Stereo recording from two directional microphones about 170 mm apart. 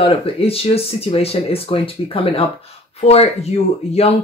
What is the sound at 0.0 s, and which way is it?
Speech, 35° left (ahead or behind).